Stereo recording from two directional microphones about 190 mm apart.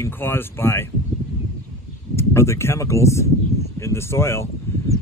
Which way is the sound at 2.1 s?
15° left (ahead or behind).